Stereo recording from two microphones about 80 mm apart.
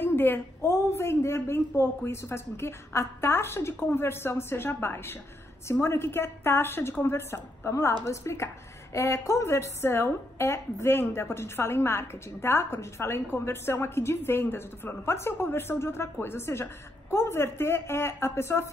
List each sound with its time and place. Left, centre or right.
0.0 s a woman's voice: left